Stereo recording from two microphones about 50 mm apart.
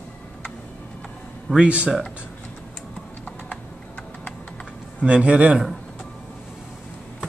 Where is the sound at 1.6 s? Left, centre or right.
Right.